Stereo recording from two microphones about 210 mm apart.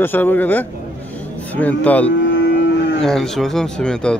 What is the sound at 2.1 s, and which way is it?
Music, 60° left (ahead or behind).